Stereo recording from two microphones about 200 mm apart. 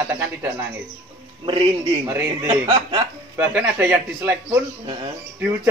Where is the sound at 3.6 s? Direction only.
10° right (ahead or behind).